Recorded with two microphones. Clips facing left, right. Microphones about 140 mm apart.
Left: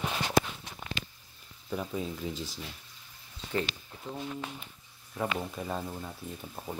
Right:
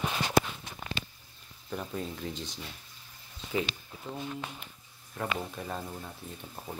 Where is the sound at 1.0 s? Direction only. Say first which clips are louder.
Right 1 dB; 35° right (ahead or behind).